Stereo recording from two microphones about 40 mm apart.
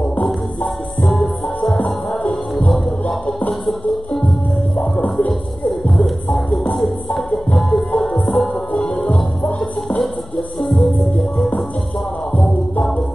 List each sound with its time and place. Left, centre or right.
1.0 s music: centre
5.7 s music: centre
10.6 s music: centre